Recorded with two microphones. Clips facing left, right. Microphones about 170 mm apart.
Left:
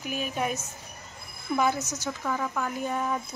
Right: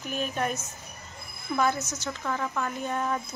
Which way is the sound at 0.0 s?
10° left (ahead or behind).